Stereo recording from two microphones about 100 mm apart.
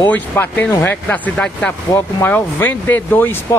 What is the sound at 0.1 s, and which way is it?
Speech, 20° left (ahead or behind).